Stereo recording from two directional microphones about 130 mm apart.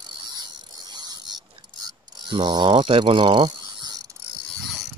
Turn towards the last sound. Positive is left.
turn(degrees=-30)  # may be behind; listen again after turning